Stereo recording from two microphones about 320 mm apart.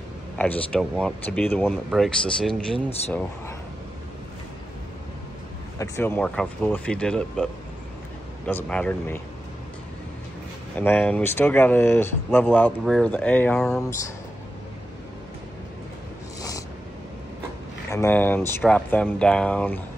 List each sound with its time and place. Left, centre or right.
0.4 s speech: centre
5.8 s speech: centre
8.5 s speech: centre
10.8 s speech: centre
16.3 s a sound: centre
17.8 s speech: centre